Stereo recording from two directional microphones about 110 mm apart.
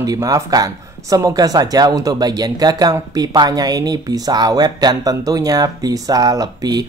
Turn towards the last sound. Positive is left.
turn(degrees=-35)  # may be behind; listen again after turning